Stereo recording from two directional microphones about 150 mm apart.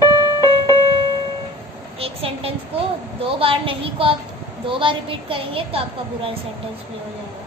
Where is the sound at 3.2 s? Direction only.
35° right (ahead or behind).